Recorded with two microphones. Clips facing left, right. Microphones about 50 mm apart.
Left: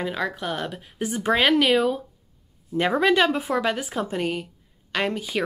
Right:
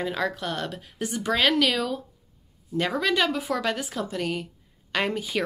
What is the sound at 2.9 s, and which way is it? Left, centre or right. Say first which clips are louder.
Speech: left 6 dB; left.